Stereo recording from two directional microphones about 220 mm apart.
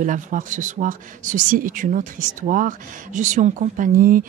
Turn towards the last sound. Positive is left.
turn(degrees=-40)  # may be behind; listen again after turning